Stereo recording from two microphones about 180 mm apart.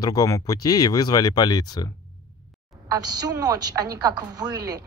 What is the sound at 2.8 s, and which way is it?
A woman's voice, 20° right (ahead or behind).